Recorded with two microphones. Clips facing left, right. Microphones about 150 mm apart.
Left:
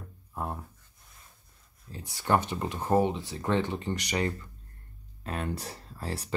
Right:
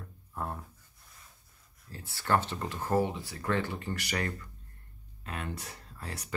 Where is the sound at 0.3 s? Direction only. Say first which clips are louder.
Left 2 dB; 20° left (ahead or behind).